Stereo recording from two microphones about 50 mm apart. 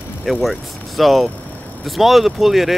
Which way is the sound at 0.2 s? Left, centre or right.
Centre.